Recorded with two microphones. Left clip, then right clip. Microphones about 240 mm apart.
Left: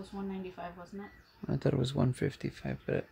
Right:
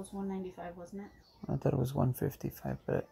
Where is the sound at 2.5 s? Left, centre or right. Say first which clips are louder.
Even; centre.